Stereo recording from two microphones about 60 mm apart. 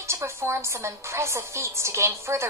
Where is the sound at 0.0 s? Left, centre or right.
Right.